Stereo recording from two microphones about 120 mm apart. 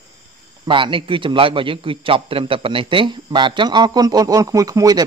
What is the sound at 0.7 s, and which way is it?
A man's voice, 45° right (ahead or behind).